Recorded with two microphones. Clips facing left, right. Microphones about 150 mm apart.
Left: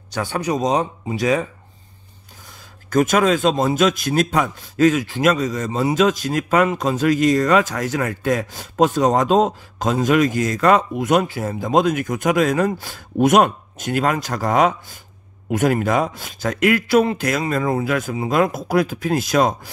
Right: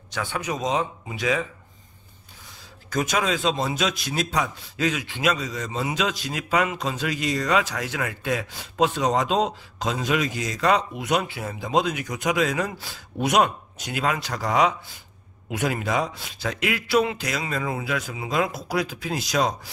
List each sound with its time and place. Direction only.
0.1 s speech: 40° left (ahead or behind)
2.9 s a man's voice: 50° left (ahead or behind)